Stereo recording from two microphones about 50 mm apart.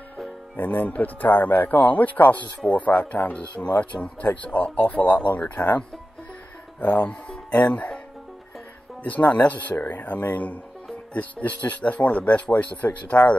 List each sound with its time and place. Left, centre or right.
0.6 s speech: left
3.9 s speech: centre
4.4 s speech: left
6.8 s speech: left
9.0 s speech: left